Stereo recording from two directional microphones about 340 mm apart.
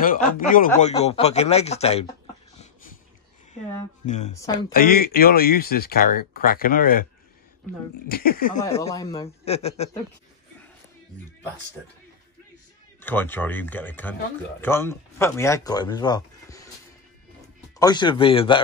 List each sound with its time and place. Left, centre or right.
0.0 s speech: left
4.0 s a man's voice: centre
4.7 s speech: left
8.1 s speech: left
8.5 s a man's voice: centre
13.0 s speech: centre
17.7 s a man's voice: centre